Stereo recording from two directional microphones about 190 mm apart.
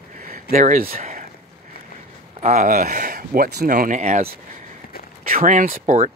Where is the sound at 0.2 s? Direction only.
45° right (ahead or behind).